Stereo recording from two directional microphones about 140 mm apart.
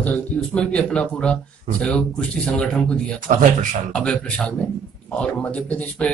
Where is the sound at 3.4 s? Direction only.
65° right (ahead or behind).